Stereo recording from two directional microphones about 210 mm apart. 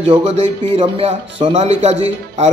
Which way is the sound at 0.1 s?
30° right (ahead or behind).